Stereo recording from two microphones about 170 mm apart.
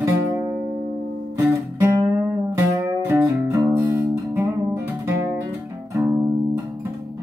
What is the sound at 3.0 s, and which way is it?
Music, 15° right (ahead or behind).